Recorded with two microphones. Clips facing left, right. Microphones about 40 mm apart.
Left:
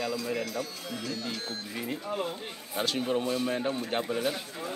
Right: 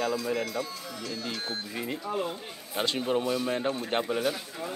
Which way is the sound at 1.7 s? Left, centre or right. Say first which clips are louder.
Even; centre.